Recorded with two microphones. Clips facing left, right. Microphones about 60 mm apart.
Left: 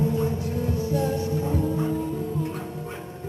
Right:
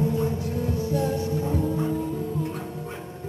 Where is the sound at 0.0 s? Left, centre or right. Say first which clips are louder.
Even; left.